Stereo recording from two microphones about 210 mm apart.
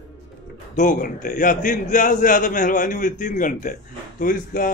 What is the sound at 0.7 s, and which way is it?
A man's voice, 40° left (ahead or behind).